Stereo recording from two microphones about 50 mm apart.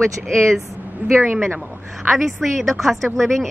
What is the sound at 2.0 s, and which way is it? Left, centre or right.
Speech, centre.